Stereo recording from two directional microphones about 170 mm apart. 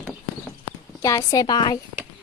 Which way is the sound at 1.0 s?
20° left (ahead or behind).